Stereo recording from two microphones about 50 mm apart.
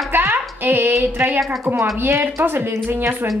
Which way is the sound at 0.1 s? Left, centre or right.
Right.